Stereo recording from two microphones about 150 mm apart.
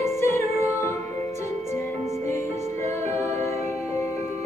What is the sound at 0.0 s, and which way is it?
Music, 20° left (ahead or behind).